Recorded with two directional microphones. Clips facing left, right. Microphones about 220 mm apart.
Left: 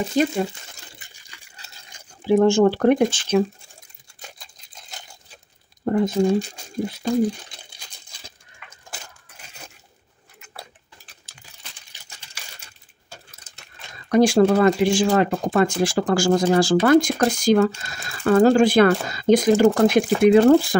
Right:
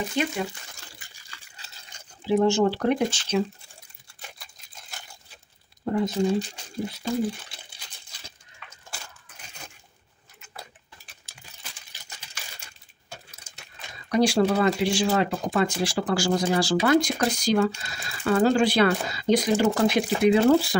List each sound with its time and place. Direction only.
0.1 s speech: 35° left (ahead or behind)
0.9 s a sound: 20° left (ahead or behind)
2.2 s speech: 50° left (ahead or behind)
5.9 s speech: 50° left (ahead or behind)
11.3 s a sound: 10° right (ahead or behind)
14.0 s speech: 50° left (ahead or behind)